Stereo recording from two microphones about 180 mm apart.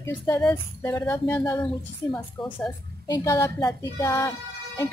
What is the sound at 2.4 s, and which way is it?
Speech, centre (ahead or behind).